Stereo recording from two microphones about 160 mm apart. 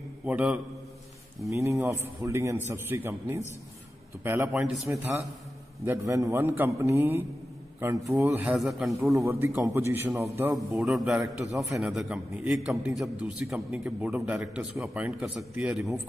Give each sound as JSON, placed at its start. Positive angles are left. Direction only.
{"t": 0.2, "sound": "a man's voice", "side_deg": -5}
{"t": 1.5, "sound": "a man's voice", "side_deg": -20}
{"t": 9.8, "sound": "a man's voice", "side_deg": -15}
{"t": 10.5, "sound": "a man's voice", "side_deg": -5}